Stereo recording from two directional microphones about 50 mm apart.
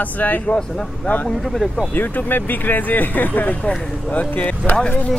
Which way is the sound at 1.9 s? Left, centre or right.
Left.